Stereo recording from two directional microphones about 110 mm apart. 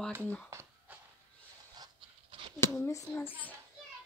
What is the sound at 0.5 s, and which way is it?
Speech, 25° right (ahead or behind).